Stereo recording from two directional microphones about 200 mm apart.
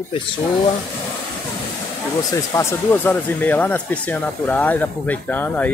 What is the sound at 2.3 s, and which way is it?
Speech, 15° left (ahead or behind).